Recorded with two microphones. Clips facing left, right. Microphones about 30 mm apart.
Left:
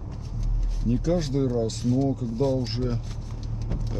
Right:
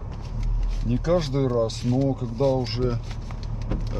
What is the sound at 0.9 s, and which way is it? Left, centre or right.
Speech, right.